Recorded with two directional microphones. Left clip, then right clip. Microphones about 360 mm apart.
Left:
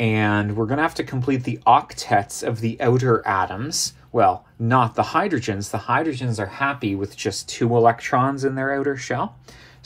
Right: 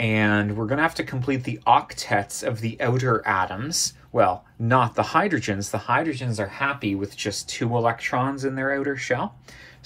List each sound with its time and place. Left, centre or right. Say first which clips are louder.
0.0 s speech: left 1 dB; centre